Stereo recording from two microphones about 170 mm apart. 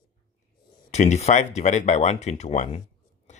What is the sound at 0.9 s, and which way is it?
Speech, 40° left (ahead or behind).